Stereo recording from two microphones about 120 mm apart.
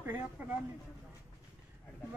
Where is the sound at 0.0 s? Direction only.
15° right (ahead or behind).